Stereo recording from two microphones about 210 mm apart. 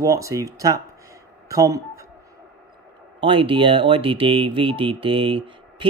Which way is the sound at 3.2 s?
25° right (ahead or behind).